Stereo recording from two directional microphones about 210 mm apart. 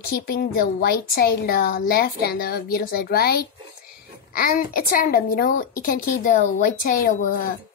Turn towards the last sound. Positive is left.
turn(degrees=40)  # may be behind; listen again after turning